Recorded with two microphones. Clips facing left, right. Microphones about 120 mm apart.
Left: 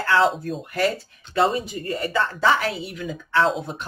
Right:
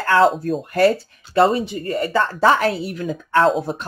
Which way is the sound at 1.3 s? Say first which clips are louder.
Right 5 dB; 35° right (ahead or behind).